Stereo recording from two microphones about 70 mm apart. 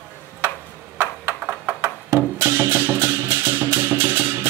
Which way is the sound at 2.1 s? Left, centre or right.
Right.